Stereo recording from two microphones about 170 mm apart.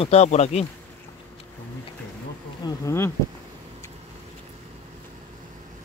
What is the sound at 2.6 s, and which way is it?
Bee, 15° left (ahead or behind).